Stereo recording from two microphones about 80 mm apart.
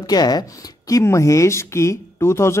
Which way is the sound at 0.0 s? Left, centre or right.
Left.